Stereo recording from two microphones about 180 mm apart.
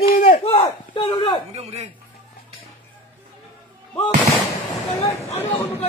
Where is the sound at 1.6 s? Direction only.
35° right (ahead or behind).